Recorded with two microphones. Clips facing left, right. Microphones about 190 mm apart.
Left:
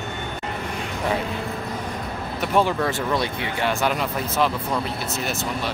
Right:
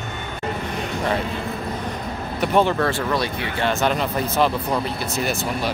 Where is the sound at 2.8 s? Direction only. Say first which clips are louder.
Right 1 dB; 20° left (ahead or behind).